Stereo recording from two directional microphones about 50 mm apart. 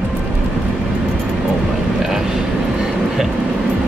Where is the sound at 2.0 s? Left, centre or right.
Centre.